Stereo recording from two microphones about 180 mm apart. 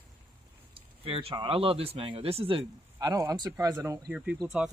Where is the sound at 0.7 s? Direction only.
30° right (ahead or behind).